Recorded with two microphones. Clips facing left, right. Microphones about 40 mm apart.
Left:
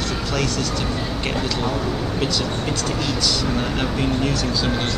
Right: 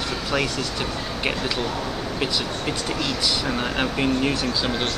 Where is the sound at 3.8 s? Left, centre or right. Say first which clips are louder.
Even; centre.